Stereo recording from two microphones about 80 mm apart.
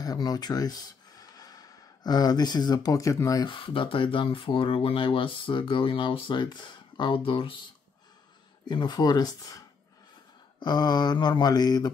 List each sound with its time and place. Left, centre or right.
0.0 s speech: left
3.4 s speech: left
8.6 s mantra: left
10.6 s mantra: left